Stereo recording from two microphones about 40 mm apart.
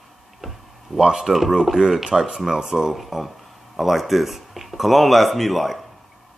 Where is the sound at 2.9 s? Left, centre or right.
Centre.